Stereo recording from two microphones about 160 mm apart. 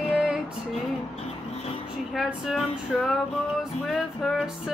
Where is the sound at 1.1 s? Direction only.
40° left (ahead or behind).